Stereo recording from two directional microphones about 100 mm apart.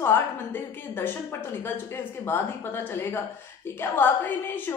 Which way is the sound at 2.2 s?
20° left (ahead or behind).